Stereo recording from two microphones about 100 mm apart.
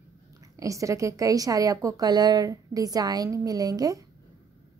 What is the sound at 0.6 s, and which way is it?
A woman's voice, 35° right (ahead or behind).